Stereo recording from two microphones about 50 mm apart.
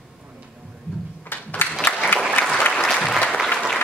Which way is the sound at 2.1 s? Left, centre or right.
Left.